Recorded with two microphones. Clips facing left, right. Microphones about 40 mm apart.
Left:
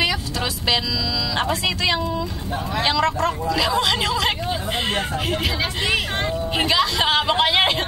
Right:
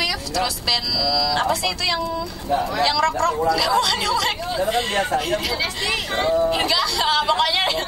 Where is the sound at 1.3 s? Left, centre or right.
Left.